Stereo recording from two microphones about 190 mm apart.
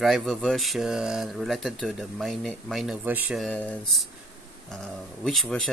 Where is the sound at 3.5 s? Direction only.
10° left (ahead or behind).